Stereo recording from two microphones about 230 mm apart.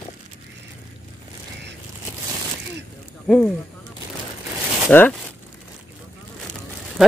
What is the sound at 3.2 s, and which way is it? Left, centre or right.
Speech, centre.